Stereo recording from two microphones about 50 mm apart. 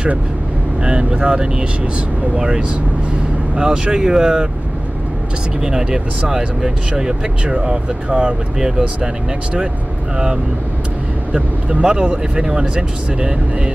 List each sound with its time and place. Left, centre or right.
0.8 s speech: centre
5.6 s speech: centre
10.1 s speech: centre